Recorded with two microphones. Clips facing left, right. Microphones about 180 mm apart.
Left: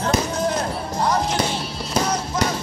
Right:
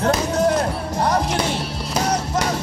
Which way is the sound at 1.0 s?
60° right (ahead or behind).